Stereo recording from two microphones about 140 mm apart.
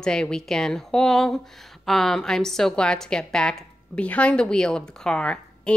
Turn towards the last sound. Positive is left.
turn(degrees=5)  # may be behind; listen again after turning